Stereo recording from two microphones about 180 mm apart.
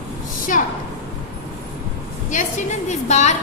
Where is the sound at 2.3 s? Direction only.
40° left (ahead or behind).